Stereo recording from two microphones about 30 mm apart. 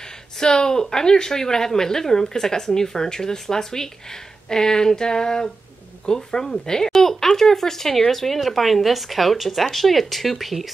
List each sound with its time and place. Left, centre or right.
0.4 s speech: left; by 10.7 s centre